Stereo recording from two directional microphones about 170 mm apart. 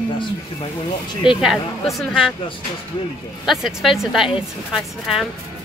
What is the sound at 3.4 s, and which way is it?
Speech, centre (ahead or behind).